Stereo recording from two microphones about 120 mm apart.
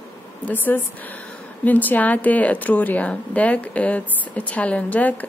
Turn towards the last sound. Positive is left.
turn(degrees=10)  # may be behind; listen again after turning